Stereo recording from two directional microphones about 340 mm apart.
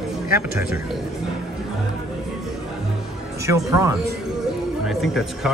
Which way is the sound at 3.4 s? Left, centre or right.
Centre.